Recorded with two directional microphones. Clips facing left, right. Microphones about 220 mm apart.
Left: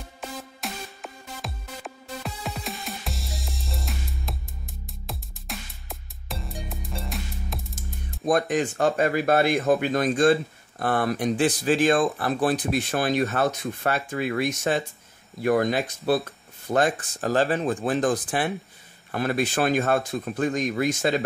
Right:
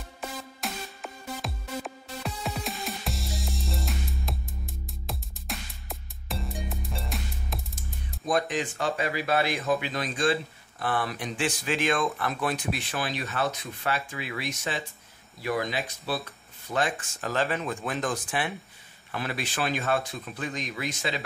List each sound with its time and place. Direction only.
0.2 s music: centre (ahead or behind)
8.3 s speech: 45° left (ahead or behind)